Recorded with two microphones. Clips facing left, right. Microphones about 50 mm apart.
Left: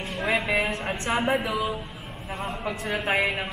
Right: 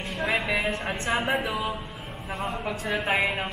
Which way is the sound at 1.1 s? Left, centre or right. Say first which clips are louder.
Left 2 dB; centre.